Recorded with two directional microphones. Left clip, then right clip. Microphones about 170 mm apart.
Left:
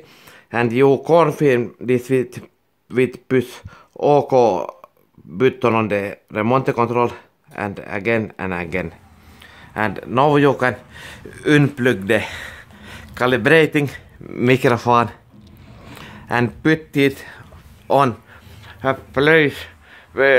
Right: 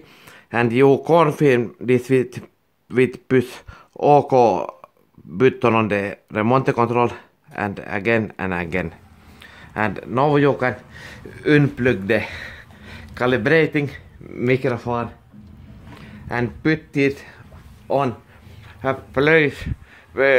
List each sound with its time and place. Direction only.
0.3 s speech: centre (ahead or behind); by 18.1 s 25° left (ahead or behind)
18.7 s speech: 15° left (ahead or behind)